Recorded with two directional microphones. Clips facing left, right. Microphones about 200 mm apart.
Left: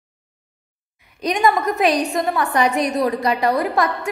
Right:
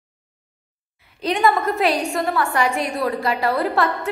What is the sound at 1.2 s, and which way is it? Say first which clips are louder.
A woman's voice: left 1 dB; 15° left (ahead or behind).